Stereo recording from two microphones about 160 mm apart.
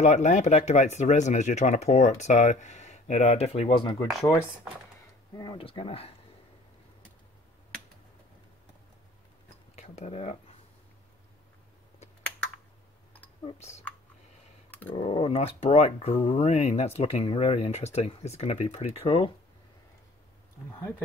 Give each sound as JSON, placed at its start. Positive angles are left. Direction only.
{"t": 0.0, "sound": "speech", "side_deg": 45}
{"t": 5.3, "sound": "speech", "side_deg": 25}
{"t": 9.8, "sound": "speech", "side_deg": 40}
{"t": 13.6, "sound": "speech", "side_deg": 45}
{"t": 14.7, "sound": "a sound", "side_deg": 10}
{"t": 15.0, "sound": "speech", "side_deg": 35}